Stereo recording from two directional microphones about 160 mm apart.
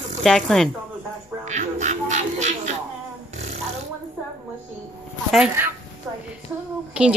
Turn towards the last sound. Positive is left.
turn(degrees=-5)  # may be behind; listen again after turning